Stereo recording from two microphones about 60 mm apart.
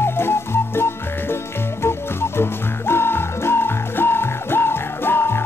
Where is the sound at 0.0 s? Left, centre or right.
Left.